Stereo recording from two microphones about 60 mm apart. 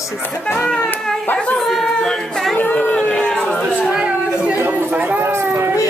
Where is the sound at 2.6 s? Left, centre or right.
Left.